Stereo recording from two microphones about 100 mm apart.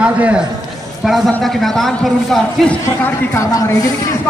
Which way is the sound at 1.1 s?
Centre (ahead or behind).